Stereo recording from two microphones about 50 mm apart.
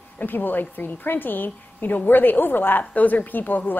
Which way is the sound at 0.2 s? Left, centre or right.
Left.